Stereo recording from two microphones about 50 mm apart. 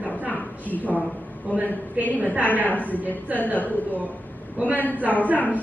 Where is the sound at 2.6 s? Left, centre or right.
Left.